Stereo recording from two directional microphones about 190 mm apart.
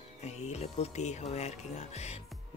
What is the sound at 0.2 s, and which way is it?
Speech, 35° left (ahead or behind).